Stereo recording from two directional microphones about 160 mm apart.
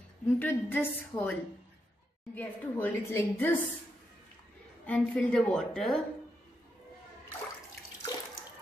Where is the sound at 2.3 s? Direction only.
10° left (ahead or behind).